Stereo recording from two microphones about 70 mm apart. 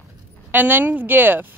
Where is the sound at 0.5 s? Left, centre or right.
Right.